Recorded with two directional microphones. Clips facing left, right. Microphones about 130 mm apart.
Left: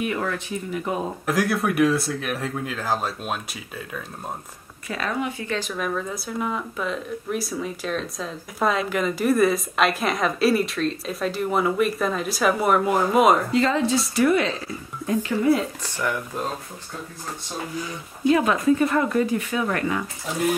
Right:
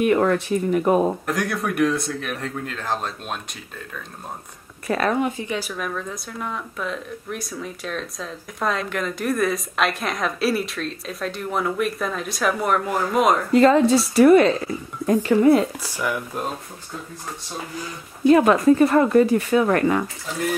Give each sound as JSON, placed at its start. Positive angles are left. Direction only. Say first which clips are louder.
{"t": 0.0, "sound": "speech", "louder": "right 8 dB", "side_deg": -45}
{"t": 1.2, "sound": "speech", "louder": "left 2 dB", "side_deg": 0}
{"t": 4.8, "sound": "speech", "louder": "right 6 dB", "side_deg": -50}
{"t": 5.4, "sound": "speech", "louder": "right 1 dB", "side_deg": -15}
{"t": 5.7, "sound": "speech", "louder": "left 2 dB", "side_deg": 0}
{"t": 13.5, "sound": "speech", "louder": "right 6 dB", "side_deg": -50}
{"t": 15.8, "sound": "speech", "louder": "right 1 dB", "side_deg": -10}
{"t": 18.3, "sound": "speech", "louder": "right 5 dB", "side_deg": -45}